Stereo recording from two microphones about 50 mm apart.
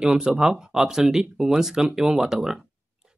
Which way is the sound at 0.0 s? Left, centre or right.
Centre.